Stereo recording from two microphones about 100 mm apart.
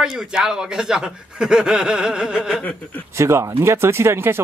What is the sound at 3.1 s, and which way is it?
Speech, 30° right (ahead or behind).